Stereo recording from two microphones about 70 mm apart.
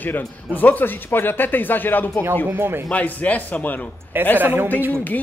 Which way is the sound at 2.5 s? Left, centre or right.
Right.